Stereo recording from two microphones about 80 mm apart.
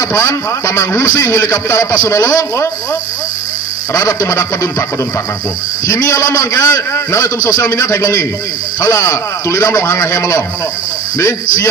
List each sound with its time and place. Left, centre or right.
0.1 s a man's voice: left
3.9 s a man's voice: left
5.9 s a man's voice: left